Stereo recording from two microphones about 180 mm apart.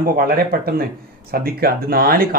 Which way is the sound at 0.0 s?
55° right (ahead or behind).